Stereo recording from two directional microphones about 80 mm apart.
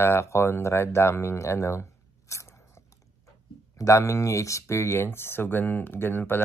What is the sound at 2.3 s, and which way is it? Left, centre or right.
Biting, left.